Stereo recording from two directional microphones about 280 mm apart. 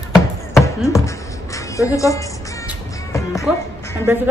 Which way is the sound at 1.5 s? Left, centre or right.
Centre.